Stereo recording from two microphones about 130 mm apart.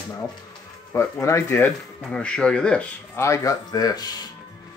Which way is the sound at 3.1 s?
25° left (ahead or behind).